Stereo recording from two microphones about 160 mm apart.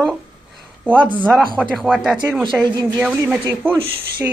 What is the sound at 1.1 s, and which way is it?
Speech, 10° right (ahead or behind).